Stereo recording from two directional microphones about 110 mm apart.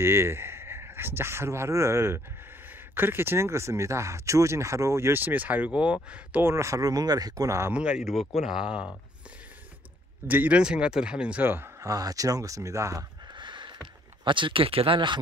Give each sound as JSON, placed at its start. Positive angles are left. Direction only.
{"t": 0.0, "sound": "speech", "side_deg": -25}
{"t": 6.3, "sound": "speech", "side_deg": -25}
{"t": 7.7, "sound": "speech", "side_deg": -10}
{"t": 10.2, "sound": "a man's voice", "side_deg": -15}
{"t": 11.9, "sound": "speech", "side_deg": -35}
{"t": 13.4, "sound": "a sound", "side_deg": -45}